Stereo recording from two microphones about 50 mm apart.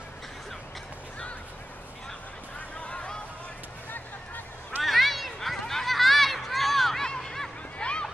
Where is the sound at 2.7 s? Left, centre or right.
Left.